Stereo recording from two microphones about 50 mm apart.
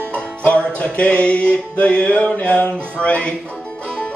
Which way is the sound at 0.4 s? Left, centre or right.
Left.